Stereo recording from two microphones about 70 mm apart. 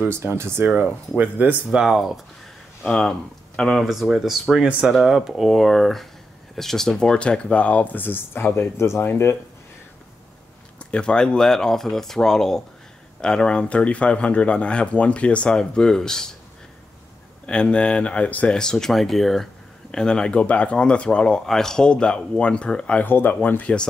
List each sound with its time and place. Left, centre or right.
0.0 s speech: right
1.7 s speech: centre
2.8 s speech: centre; by 9.4 s left
10.8 s speech: centre
17.5 s speech: centre
23.0 s speech: left